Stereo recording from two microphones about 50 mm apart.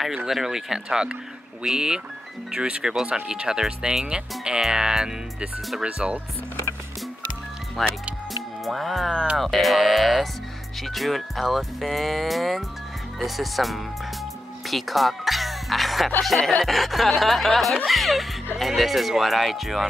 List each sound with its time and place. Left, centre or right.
0.3 s speech: centre
7.8 s speech: centre
14.7 s music: centre
16.2 s speech: centre